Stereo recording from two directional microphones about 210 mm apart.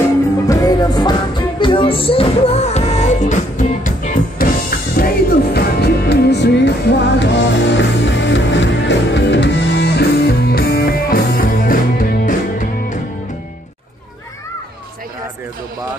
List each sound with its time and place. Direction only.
0.5 s music: 15° left (ahead or behind); by 13.0 s 40° left (ahead or behind)